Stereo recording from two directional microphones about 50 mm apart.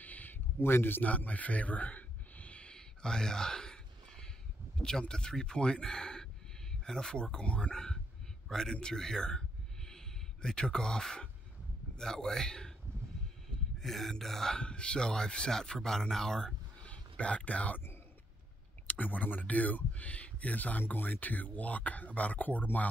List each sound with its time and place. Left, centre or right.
0.0 s a sound: left
0.6 s a man's voice: left
1.0 s a sound: left
2.7 s a sound: centre
4.7 s speech: centre
7.7 s a man's voice: centre
13.7 s speech: centre
16.8 s speech: left
18.9 s speech: left